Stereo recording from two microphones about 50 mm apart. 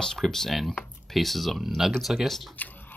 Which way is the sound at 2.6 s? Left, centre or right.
Left.